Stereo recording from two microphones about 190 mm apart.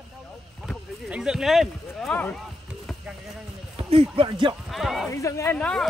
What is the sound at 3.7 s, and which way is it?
Speech, 30° right (ahead or behind).